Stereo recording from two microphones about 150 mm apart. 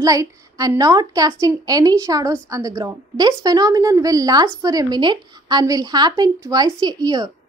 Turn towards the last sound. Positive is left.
turn(degrees=-25)  # may be behind; listen again after turning